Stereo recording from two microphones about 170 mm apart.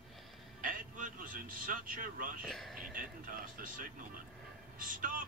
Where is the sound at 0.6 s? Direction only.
55° right (ahead or behind).